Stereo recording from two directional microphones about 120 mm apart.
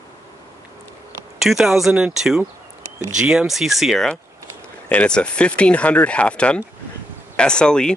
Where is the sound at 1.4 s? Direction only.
5° right (ahead or behind).